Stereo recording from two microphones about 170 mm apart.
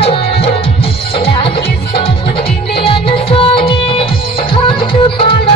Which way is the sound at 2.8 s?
30° left (ahead or behind).